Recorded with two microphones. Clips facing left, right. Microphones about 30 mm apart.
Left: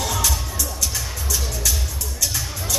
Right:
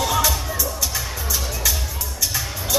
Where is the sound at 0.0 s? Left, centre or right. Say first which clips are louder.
Right 4 dB; centre.